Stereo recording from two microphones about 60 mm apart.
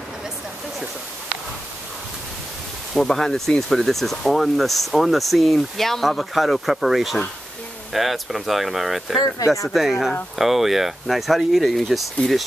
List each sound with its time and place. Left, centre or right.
2.9 s speech: centre